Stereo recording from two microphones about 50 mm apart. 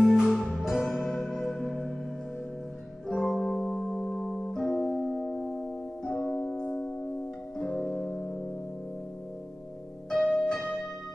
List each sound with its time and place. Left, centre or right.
0.0 s music: centre
1.0 s music: centre
3.1 s music: centre; by 7.8 s left
8.0 s music: centre
10.1 s music: centre